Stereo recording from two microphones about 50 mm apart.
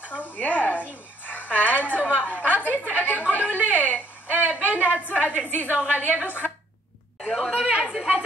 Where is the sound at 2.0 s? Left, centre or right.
Right.